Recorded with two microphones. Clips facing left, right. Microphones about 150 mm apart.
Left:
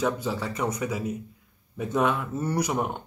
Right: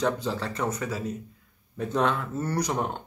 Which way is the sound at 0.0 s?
10° left (ahead or behind).